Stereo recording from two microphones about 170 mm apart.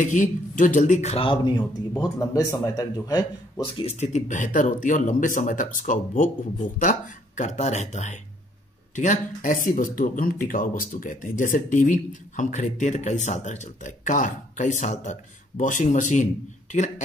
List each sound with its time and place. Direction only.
0.0 s speech: 50° left (ahead or behind); by 1.5 s 30° left (ahead or behind)
2.0 s speech: 15° left (ahead or behind)
3.8 s speech: 40° left (ahead or behind)